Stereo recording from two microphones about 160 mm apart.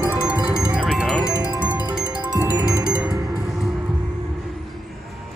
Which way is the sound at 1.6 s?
10° right (ahead or behind).